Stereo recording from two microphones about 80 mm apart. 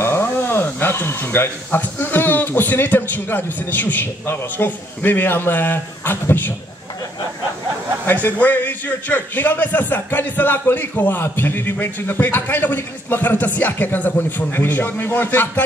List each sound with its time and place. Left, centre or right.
0.0 s a man's voice: left
8.1 s a man's voice: left